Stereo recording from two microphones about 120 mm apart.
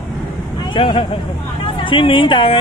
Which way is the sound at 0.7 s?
45° left (ahead or behind).